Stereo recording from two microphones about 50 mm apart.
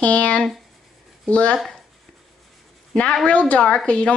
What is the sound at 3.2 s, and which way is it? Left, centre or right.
Speech, left.